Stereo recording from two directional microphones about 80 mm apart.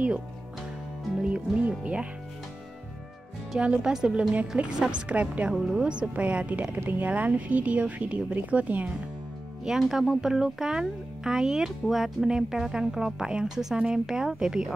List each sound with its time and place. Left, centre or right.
1.2 s speech: centre
3.5 s speech: centre
9.7 s speech: centre